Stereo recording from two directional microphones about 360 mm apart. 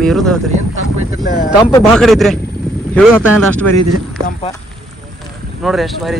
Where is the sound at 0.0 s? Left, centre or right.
Centre.